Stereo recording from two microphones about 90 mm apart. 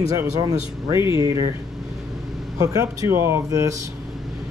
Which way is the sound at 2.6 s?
40° right (ahead or behind).